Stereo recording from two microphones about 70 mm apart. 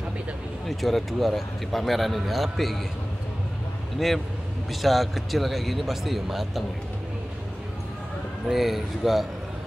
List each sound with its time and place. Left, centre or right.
0.7 s a man's voice: centre
4.8 s a man's voice: centre
8.5 s a man's voice: centre